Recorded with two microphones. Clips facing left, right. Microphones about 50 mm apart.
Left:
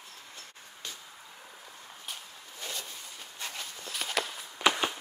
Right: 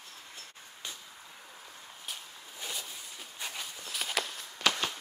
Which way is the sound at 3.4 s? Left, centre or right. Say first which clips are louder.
Left 1 dB; centre.